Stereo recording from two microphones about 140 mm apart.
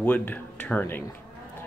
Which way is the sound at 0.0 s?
15° left (ahead or behind).